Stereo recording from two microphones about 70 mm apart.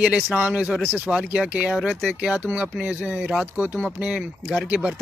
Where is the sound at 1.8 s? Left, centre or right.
Centre.